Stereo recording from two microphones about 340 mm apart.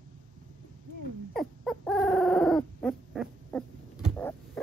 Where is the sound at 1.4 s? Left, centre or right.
Centre.